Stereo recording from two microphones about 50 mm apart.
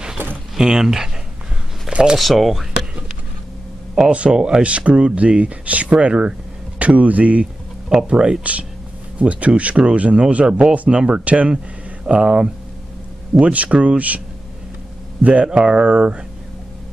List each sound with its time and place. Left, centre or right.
0.6 s speech: centre
1.9 s shuffling cards: right
2.1 s speech: centre
4.1 s speech: right
7.9 s speech: centre
15.4 s speech: right